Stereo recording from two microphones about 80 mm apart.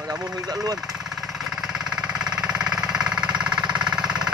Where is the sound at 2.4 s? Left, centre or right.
Centre.